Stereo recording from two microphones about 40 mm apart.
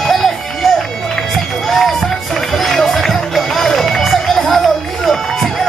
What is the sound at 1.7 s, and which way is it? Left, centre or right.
Music, centre.